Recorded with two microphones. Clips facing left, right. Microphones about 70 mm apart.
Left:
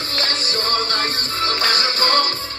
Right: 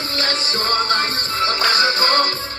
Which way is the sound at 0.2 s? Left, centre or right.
Right.